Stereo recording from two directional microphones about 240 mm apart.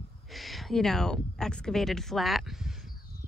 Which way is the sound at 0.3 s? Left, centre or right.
Centre.